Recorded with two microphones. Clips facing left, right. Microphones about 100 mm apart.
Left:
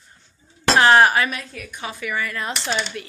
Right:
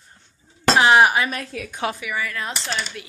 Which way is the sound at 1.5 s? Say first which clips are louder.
Right 6 dB; 90° right.